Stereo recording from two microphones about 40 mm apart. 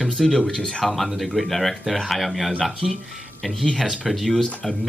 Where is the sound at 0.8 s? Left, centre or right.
Centre.